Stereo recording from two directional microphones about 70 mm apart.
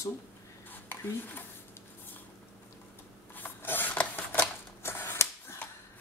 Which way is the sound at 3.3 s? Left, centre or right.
Left.